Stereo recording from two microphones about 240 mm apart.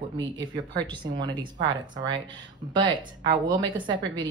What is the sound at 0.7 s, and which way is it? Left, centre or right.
A woman's voice, centre.